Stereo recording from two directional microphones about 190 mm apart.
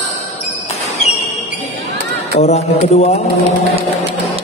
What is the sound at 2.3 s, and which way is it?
Mantra, 35° left (ahead or behind).